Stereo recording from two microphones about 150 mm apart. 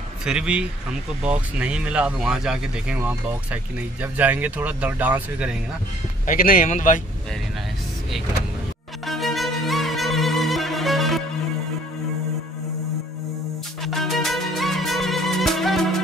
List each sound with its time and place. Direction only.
0.2 s speech: 5° right (ahead or behind)
4.0 s speech: 10° right (ahead or behind)
6.2 s speech: 70° left (ahead or behind)
9.0 s violin: centre (ahead or behind)
13.8 s music: centre (ahead or behind)